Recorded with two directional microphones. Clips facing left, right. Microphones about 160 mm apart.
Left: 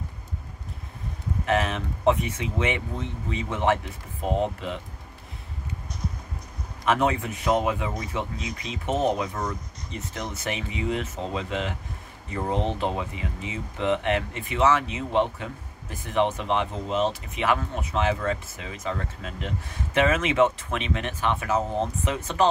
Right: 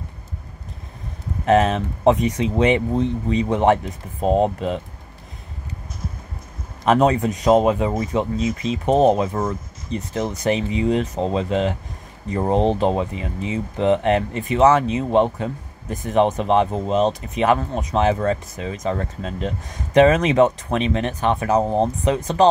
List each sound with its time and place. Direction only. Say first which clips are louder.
1.4 s speech: right 9 dB; 35° right (ahead or behind)
6.9 s speech: right 7 dB; 40° right (ahead or behind)